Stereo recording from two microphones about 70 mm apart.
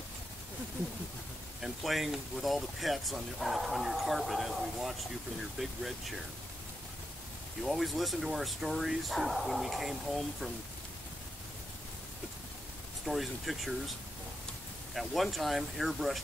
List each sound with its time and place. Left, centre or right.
1.6 s speech: centre
7.6 s speech: centre
13.0 s speech: centre
15.0 s speech: centre